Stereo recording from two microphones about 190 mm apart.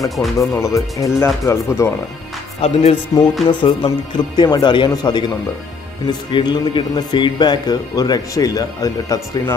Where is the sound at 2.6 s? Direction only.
35° left (ahead or behind).